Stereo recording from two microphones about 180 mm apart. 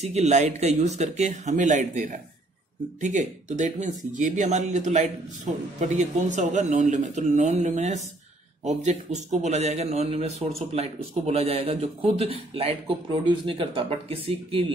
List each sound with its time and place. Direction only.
0.0 s a man's voice: 40° right (ahead or behind)